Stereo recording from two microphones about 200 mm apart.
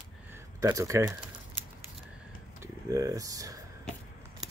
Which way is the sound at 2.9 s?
15° right (ahead or behind).